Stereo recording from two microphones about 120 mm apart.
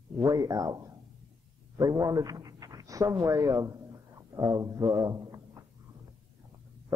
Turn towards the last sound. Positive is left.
turn(degrees=-30)  # may be behind; listen again after turning